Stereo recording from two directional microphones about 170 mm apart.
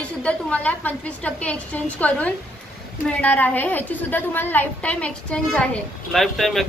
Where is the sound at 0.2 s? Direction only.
5° left (ahead or behind).